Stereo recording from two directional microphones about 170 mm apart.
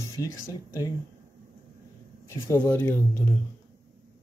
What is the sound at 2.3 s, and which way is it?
Speech, 15° left (ahead or behind).